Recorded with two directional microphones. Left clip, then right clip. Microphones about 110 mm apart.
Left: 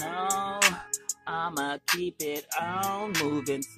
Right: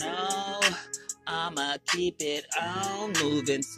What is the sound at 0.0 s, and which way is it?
Music, 25° left (ahead or behind).